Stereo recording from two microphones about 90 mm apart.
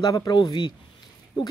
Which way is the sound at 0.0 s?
45° left (ahead or behind).